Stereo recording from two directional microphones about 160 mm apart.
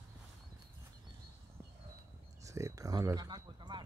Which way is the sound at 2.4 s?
20° right (ahead or behind).